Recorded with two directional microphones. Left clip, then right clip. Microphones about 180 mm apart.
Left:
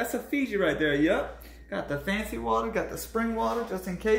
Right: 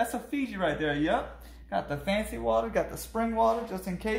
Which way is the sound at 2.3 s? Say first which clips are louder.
Left 1 dB; 40° right (ahead or behind).